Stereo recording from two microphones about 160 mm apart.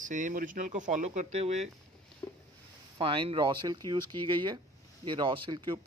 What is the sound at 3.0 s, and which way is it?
Speech, 35° right (ahead or behind).